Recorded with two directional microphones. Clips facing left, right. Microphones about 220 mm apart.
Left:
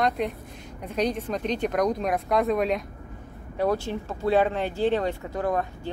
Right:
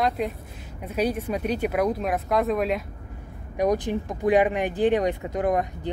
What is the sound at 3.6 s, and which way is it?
Speech, 15° right (ahead or behind).